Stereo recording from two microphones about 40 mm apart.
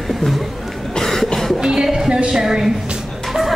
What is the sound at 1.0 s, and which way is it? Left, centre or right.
Cough, centre.